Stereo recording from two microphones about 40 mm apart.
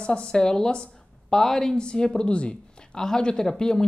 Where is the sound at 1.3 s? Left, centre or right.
Centre.